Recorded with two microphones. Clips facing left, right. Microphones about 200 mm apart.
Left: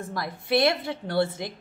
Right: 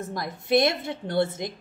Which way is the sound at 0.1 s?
20° right (ahead or behind).